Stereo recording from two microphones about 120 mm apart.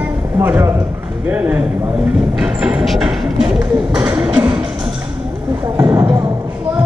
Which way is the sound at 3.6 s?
10° right (ahead or behind).